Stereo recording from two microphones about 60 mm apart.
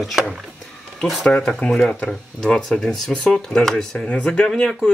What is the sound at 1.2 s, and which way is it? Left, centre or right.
Speech, centre.